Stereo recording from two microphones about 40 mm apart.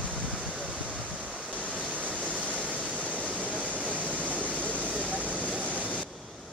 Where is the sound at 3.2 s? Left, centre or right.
Right.